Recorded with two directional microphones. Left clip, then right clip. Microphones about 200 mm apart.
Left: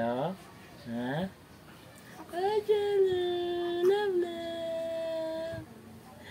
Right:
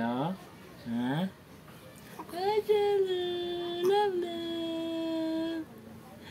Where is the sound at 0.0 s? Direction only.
15° left (ahead or behind).